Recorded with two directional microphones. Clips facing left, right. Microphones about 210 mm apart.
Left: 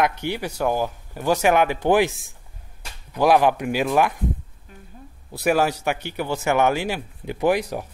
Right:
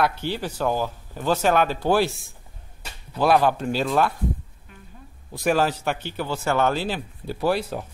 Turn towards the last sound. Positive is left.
turn(degrees=15)  # may be behind; listen again after turning